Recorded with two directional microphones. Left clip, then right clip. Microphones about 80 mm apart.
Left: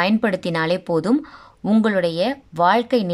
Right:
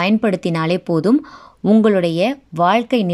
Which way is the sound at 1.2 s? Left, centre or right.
Right.